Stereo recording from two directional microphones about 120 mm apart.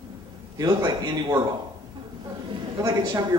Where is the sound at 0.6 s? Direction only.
30° right (ahead or behind).